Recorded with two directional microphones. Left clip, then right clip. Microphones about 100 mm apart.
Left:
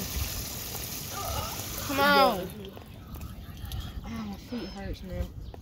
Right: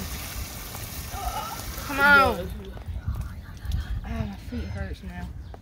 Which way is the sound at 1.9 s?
35° right (ahead or behind).